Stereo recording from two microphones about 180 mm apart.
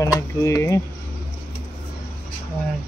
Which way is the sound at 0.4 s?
20° left (ahead or behind).